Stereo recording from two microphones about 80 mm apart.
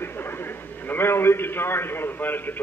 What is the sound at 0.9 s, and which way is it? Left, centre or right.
A man's voice, left.